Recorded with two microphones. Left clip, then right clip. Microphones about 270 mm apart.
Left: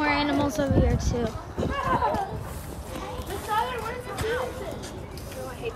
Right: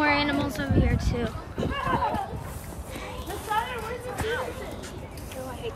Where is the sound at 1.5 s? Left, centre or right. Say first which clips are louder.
Left 1 dB; left.